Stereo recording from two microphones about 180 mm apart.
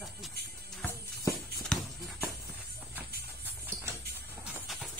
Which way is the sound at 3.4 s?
10° right (ahead or behind).